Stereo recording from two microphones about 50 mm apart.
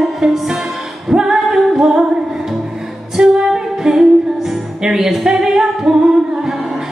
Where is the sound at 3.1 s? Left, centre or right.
Centre.